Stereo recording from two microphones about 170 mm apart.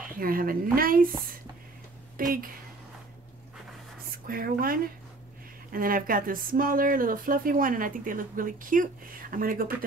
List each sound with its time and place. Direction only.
0.2 s speech: 55° right (ahead or behind)
2.1 s speech: 55° right (ahead or behind)
4.1 s speech: 60° right (ahead or behind)